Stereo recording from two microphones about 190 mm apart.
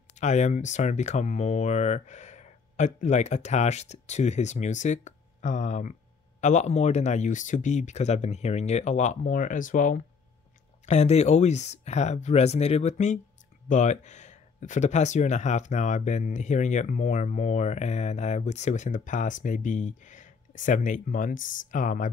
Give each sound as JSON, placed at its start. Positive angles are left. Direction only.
{"t": 0.1, "sound": "speech", "side_deg": 40}